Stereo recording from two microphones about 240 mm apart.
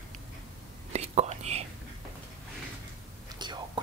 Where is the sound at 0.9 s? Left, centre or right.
Right.